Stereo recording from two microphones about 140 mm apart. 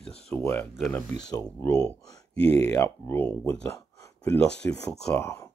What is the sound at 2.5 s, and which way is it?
Speech, 20° left (ahead or behind).